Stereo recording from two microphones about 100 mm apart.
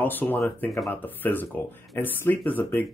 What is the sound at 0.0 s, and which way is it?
Speech, 20° left (ahead or behind).